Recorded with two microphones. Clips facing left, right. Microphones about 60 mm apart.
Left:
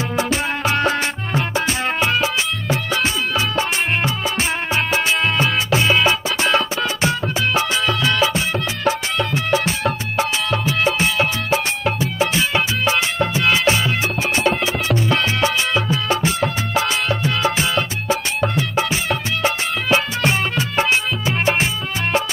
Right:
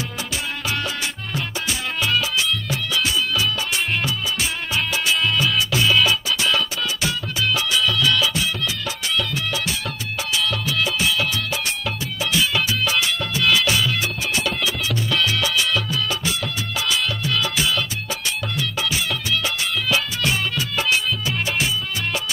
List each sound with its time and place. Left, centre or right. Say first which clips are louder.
0.2 s music: left 10 dB; left